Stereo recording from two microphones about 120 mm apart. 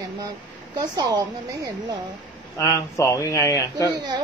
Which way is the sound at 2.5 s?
25° left (ahead or behind).